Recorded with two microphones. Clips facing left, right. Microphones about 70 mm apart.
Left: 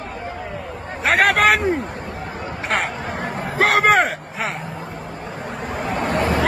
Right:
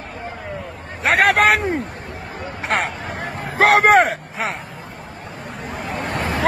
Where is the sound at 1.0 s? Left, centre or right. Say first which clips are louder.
Right 1 dB; centre.